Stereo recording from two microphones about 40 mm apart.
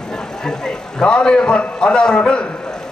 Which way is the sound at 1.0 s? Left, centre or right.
Left.